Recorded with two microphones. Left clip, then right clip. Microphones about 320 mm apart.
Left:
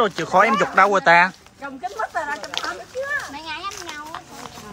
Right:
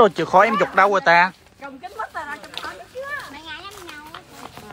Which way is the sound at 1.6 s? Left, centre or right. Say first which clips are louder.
Left 4 dB; left.